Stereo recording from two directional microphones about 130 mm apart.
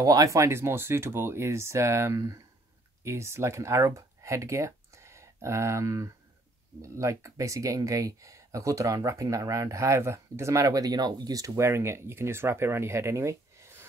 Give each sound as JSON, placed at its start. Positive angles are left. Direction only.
{"t": 0.0, "sound": "speech", "side_deg": -30}